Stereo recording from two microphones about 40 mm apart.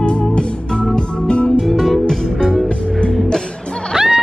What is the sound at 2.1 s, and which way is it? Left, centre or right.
Music, centre.